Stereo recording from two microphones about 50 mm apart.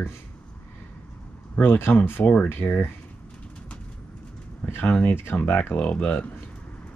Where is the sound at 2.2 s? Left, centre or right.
Left.